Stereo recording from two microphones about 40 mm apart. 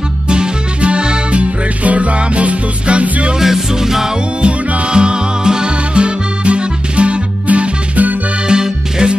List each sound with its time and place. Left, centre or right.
0.3 s music: right
3.3 s music: centre
4.4 s music: right
8.5 s music: right